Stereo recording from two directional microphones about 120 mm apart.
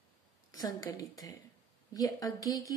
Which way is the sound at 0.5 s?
30° left (ahead or behind).